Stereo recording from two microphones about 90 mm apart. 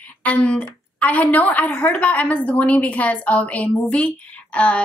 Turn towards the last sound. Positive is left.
turn(degrees=15)  # may be behind; listen again after turning